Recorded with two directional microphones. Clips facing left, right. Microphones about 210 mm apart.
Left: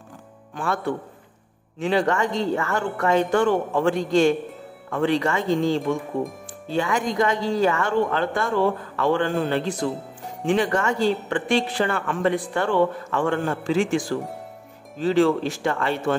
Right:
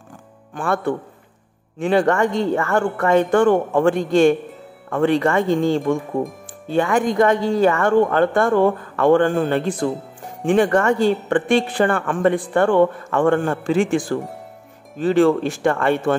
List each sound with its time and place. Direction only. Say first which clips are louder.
0.6 s speech: right 4 dB; 50° right (ahead or behind)